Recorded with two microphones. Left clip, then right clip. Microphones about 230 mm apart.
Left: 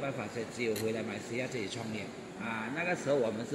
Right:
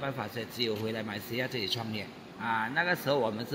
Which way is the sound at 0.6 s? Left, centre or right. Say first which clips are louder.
Right 1 dB; right.